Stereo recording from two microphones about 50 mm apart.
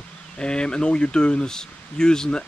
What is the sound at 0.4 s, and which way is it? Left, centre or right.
Speech, centre.